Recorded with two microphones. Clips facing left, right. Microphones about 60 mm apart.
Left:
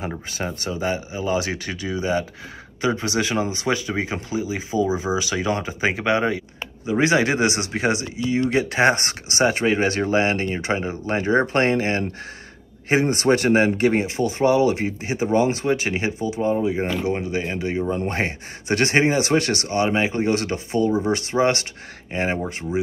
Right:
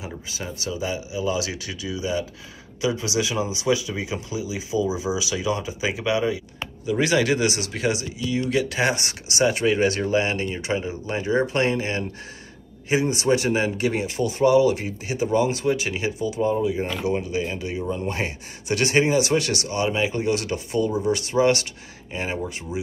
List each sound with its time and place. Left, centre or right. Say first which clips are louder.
0.0 s speech: left 5 dB; left
6.9 s speech: left 2 dB; left